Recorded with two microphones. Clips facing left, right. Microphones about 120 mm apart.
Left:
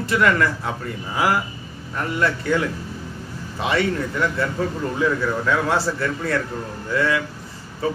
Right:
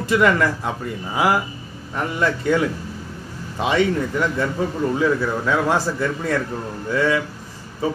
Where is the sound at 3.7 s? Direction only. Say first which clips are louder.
Right 3 dB; 15° right (ahead or behind).